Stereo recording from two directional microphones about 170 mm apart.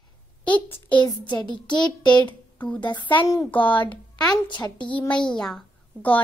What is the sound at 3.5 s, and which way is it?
Speech, 10° left (ahead or behind).